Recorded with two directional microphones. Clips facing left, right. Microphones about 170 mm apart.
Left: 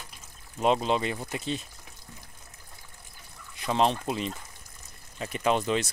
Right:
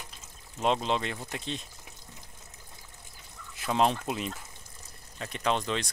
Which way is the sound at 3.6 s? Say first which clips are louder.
Left 1 dB; 5° right (ahead or behind).